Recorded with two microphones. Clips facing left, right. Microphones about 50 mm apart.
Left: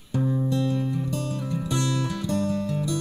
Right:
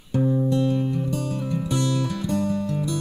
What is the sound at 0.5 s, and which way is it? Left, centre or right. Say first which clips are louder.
Music: right 3 dB; right.